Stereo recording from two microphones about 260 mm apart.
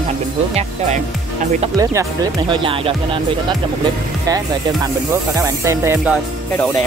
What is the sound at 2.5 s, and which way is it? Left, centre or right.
Speech, centre.